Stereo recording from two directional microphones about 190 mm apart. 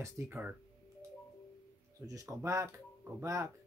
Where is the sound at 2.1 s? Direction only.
15° right (ahead or behind).